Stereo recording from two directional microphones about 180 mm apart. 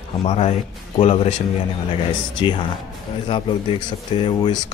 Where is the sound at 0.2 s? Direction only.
35° left (ahead or behind).